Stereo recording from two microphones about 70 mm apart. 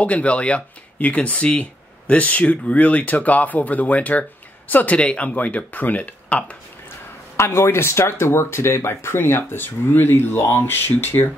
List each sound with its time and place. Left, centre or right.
0.0 s speech: centre
7.3 s speech: left